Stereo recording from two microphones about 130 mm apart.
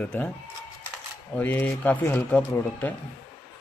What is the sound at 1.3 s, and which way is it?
A man's voice, 15° left (ahead or behind).